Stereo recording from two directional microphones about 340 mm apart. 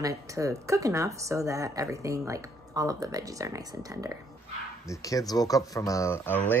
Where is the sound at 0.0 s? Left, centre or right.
Centre.